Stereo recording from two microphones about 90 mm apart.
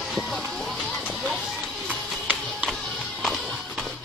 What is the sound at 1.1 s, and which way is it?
Music, centre (ahead or behind).